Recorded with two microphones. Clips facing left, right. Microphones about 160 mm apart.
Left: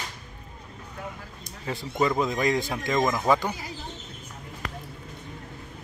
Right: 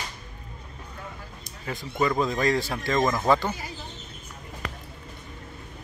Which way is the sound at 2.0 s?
20° left (ahead or behind).